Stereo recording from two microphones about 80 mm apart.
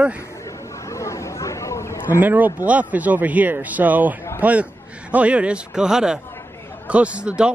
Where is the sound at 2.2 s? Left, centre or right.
Right.